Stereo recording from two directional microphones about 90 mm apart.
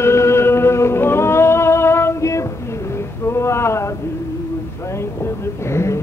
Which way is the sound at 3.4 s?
30° left (ahead or behind).